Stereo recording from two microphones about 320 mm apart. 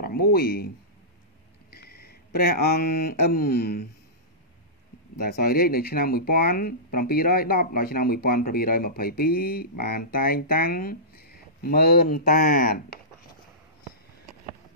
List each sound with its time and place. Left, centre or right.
0.0 s speech: left
1.7 s speech: left
5.2 s speech: left